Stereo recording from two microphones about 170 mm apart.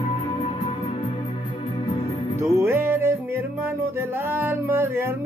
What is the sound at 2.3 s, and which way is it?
Music, 15° right (ahead or behind).